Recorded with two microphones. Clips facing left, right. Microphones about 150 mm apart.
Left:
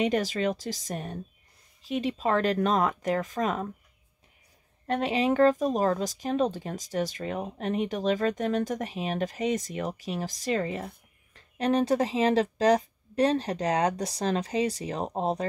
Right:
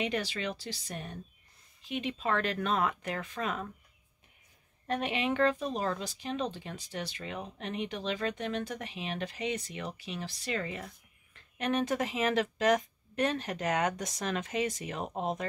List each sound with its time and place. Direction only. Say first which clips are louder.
0.0 s speech: left 7 dB; 40° left (ahead or behind)
5.0 s speech: left 7 dB; 35° left (ahead or behind)